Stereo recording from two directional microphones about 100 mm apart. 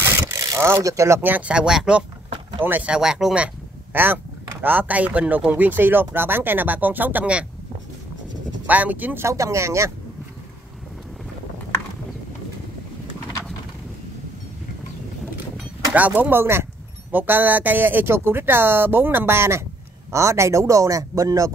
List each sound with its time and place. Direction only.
0.0 s a sound: 30° right (ahead or behind)
0.7 s speech: 30° right (ahead or behind)
1.3 s speech: 10° right (ahead or behind)
3.9 s speech: 20° right (ahead or behind)
8.6 s speech: 15° right (ahead or behind)
15.9 s speech: 15° right (ahead or behind); by 21.5 s 30° right (ahead or behind)